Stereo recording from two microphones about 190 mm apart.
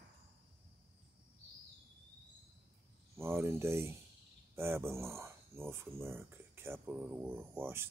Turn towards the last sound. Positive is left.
turn(degrees=-10)  # may be behind; listen again after turning